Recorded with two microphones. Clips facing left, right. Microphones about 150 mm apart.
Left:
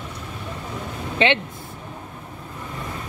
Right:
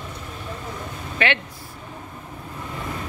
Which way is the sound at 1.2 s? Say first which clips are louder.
Left 4 dB; 25° left (ahead or behind).